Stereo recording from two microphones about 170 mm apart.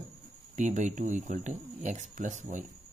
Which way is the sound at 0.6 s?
45° right (ahead or behind).